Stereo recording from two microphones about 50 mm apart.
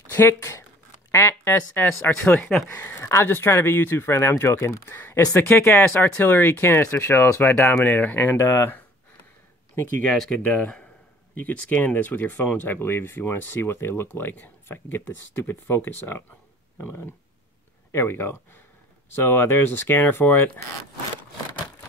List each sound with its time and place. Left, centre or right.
0.1 s speech: left
5.4 s speech: left
7.8 s speech: left
8.4 s speech: left
9.8 s speech: left
10.0 s speech: centre
10.4 s speech: left
17.9 s speech: left